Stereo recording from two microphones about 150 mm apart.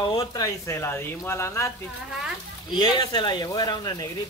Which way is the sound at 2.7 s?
30° left (ahead or behind).